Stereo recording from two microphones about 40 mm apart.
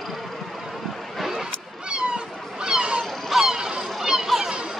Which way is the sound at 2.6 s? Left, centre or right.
Right.